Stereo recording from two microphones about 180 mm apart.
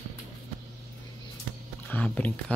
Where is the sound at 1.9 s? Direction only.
5° left (ahead or behind).